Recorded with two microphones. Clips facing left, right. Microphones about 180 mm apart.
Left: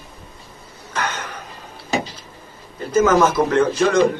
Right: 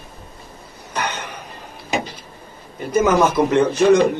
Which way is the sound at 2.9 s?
15° right (ahead or behind).